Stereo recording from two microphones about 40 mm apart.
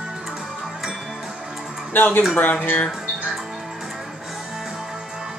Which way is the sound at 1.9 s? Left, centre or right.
Left.